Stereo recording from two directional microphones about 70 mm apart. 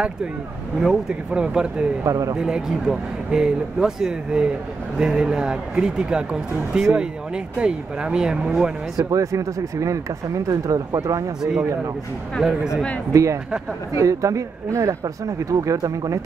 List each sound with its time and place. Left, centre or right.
0.7 s speech: centre
2.0 s speech: right
2.3 s speech: centre
8.9 s speech: right
12.4 s speech: centre
13.1 s speech: right